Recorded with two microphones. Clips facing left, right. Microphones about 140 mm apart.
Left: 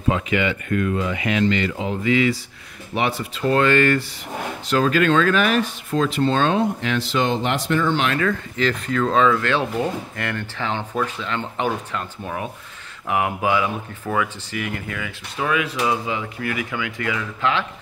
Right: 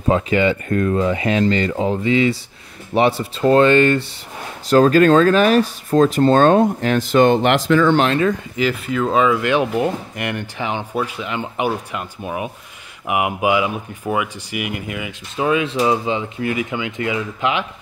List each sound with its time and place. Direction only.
0.1 s speech: 35° right (ahead or behind)
4.6 s speech: 40° right (ahead or behind)
8.1 s speech: 20° right (ahead or behind)
8.5 s speech: 10° right (ahead or behind)